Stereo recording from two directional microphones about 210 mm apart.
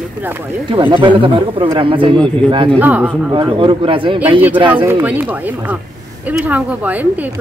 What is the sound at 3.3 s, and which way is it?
Speech, 25° right (ahead or behind).